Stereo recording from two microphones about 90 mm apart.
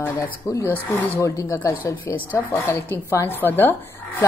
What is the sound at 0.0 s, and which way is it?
Speech, 35° left (ahead or behind).